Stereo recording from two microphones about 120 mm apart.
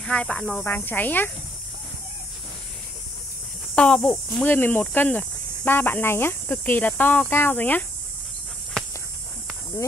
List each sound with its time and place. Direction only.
0.0 s speech: 10° left (ahead or behind)
3.7 s speech: 5° left (ahead or behind)
8.8 s a sound: 5° left (ahead or behind)